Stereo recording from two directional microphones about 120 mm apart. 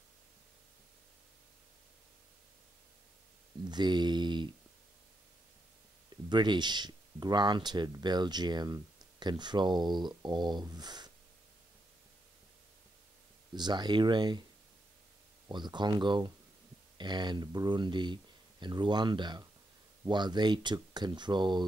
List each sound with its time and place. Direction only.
3.6 s speech: 40° right (ahead or behind)
6.2 s speech: 40° right (ahead or behind)
13.6 s speech: 35° right (ahead or behind)
15.4 s speech: 40° right (ahead or behind)